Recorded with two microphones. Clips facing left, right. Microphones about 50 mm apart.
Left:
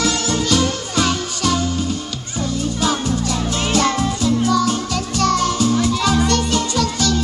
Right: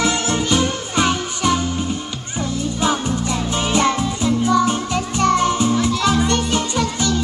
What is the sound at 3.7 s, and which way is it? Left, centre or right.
Music, centre.